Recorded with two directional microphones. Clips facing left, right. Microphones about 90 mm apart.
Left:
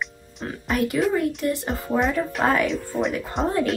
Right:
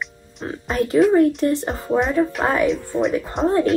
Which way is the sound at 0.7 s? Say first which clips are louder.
Right 6 dB; 35° right (ahead or behind).